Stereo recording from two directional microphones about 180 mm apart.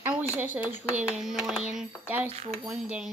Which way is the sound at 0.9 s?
5° right (ahead or behind).